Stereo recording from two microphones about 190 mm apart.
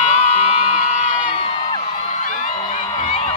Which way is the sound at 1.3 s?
30° left (ahead or behind).